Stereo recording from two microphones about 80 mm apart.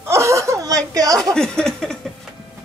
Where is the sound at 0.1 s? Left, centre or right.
Right.